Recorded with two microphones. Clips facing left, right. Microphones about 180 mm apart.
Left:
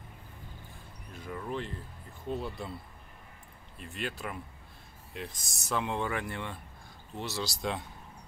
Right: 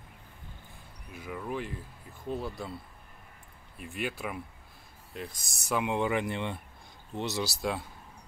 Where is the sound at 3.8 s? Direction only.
10° right (ahead or behind).